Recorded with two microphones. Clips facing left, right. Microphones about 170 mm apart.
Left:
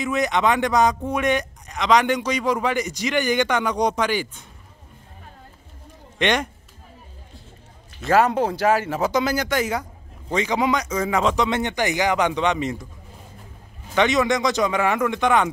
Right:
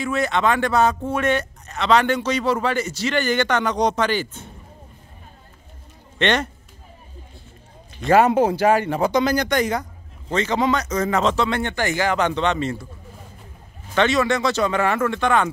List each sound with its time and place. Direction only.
0.0 s speech: 15° left (ahead or behind)
6.1 s a man's voice: 10° left (ahead or behind)
8.0 s speech: centre (ahead or behind); by 12.8 s 15° left (ahead or behind)
13.9 s speech: 15° left (ahead or behind)